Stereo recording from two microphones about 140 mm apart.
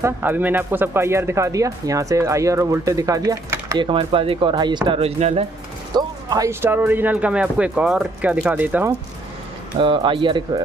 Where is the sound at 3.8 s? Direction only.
40° right (ahead or behind).